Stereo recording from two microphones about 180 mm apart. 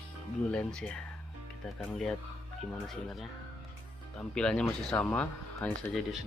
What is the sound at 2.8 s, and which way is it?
Speech, centre (ahead or behind).